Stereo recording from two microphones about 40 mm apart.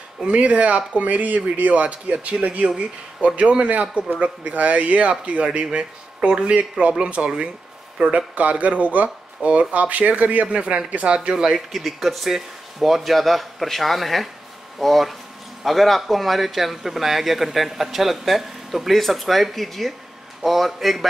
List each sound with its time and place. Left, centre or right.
0.2 s speech: right
4.2 s speech: right
11.1 s speech: centre